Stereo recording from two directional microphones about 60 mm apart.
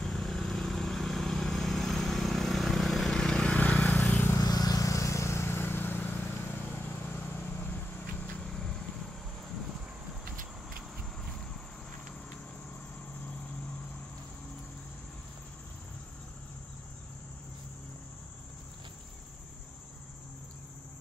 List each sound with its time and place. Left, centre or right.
0.0 s vehicle: centre
3.2 s vehicle: centre
4.0 s a sound: left
4.4 s vehicle: left
8.4 s vehicle: centre